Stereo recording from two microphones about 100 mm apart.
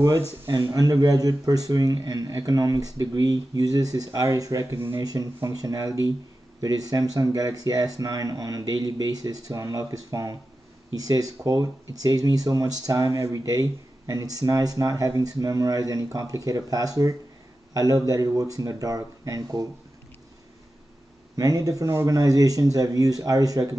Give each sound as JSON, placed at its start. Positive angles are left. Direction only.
{"t": 0.5, "sound": "speech", "side_deg": -40}
{"t": 5.0, "sound": "speech", "side_deg": -40}
{"t": 21.4, "sound": "speech", "side_deg": -35}